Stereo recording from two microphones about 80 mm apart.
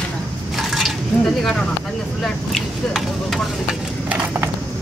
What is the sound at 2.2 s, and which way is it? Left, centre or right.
Speech, centre.